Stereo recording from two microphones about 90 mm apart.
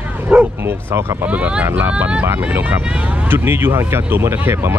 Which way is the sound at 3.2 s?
25° right (ahead or behind).